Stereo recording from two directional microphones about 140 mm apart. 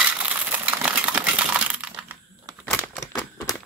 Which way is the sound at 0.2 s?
10° right (ahead or behind).